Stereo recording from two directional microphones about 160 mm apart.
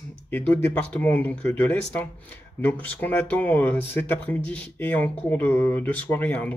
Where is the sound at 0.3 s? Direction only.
10° left (ahead or behind).